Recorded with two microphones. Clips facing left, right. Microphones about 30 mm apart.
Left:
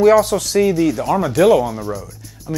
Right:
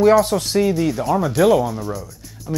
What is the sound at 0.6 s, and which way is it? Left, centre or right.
Speech, centre.